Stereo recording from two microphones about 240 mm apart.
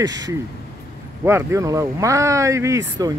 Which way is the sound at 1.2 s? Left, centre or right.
Centre.